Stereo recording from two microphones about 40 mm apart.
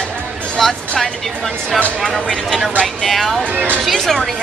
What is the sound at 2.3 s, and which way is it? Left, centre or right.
Speech, centre.